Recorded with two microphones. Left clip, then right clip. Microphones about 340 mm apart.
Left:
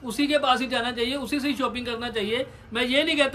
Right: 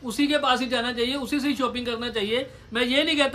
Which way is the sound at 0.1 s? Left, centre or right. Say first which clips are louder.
Even; centre.